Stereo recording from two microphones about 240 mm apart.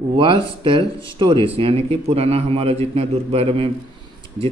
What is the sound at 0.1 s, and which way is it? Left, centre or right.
A man's voice, right.